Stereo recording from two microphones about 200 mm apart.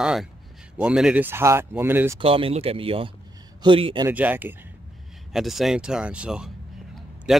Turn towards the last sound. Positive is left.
turn(degrees=0)  # may be behind; listen again after turning